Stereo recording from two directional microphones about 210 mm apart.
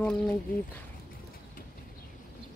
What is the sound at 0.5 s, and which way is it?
Speech, 40° left (ahead or behind).